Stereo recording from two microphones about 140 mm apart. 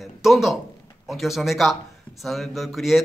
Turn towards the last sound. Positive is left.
turn(degrees=0)  # may be behind; listen again after turning